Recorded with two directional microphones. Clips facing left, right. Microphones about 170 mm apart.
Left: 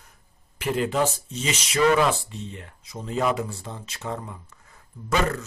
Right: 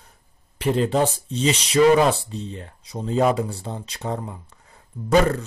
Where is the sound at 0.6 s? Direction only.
35° right (ahead or behind).